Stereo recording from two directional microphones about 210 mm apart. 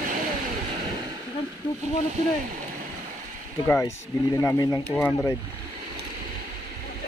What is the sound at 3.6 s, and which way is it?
Speech, 15° left (ahead or behind).